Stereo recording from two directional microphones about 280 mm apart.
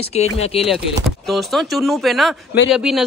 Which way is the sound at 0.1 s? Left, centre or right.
Left.